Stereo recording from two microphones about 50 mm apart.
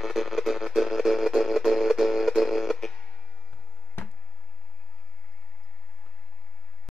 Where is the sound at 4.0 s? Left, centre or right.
Left.